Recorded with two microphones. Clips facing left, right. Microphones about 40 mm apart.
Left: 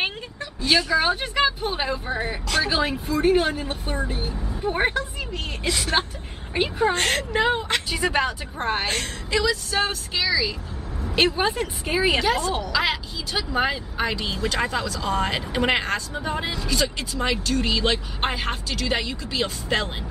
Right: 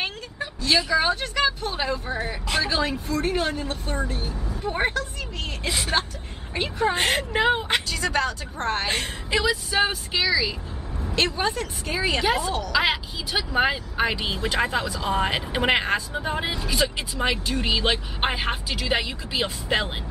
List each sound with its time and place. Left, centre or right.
0.7 s speech: centre
1.2 s speech: centre
5.7 s speech: centre
6.5 s speech: centre
6.9 s speech: centre
7.9 s speech: centre
8.8 s speech: centre
11.1 s speech: centre
12.2 s speech: centre